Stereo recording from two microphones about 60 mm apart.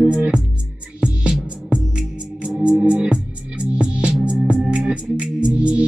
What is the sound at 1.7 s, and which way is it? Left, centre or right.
Music, centre.